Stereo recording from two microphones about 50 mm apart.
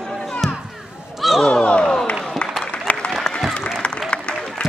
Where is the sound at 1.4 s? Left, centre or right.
Centre.